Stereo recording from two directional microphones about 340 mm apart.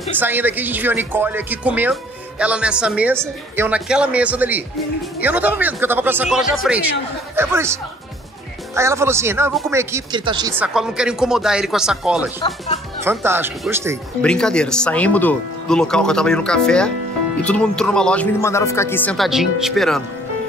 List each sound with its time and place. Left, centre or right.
0.2 s speech: centre
12.4 s speech: centre
13.0 s speech: centre